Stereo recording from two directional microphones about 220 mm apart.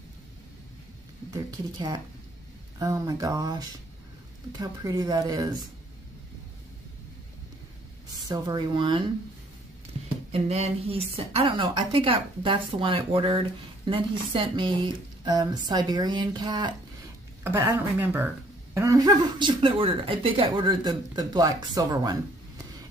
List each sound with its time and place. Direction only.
1.3 s a woman's voice: 20° right (ahead or behind)
8.1 s speech: 20° right (ahead or behind)
10.3 s a woman's voice: 25° right (ahead or behind)